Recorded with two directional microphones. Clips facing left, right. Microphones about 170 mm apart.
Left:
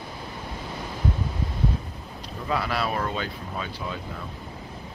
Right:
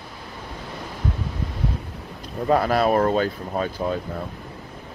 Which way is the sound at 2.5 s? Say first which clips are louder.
Right 8 dB; 45° right (ahead or behind).